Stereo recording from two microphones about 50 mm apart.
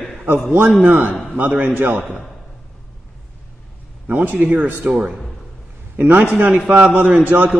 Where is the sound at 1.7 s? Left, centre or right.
Right.